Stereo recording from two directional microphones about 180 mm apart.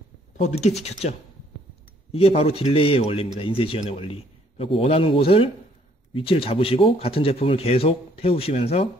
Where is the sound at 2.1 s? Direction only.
30° left (ahead or behind).